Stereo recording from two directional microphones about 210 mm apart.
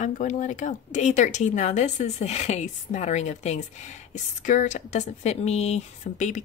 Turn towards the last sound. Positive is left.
turn(degrees=35)  # may be behind; listen again after turning